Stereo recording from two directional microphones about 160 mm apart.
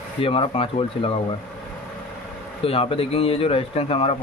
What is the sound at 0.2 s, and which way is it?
Speech, 35° left (ahead or behind).